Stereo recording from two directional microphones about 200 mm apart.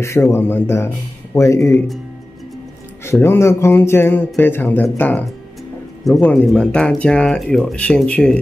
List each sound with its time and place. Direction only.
0.0 s speech: 15° left (ahead or behind)
3.0 s speech: 10° left (ahead or behind)